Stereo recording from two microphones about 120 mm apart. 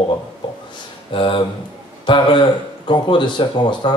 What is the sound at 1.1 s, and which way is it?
Speech, 45° left (ahead or behind).